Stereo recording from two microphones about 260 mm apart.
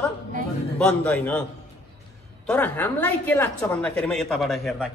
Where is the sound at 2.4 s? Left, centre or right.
Centre.